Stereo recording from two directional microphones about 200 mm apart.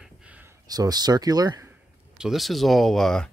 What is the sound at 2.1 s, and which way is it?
Speech, centre (ahead or behind).